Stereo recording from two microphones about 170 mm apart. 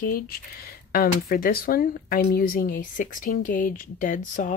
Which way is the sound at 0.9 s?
55° left (ahead or behind).